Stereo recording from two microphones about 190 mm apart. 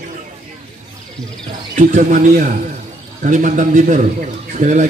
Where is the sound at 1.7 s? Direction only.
40° right (ahead or behind).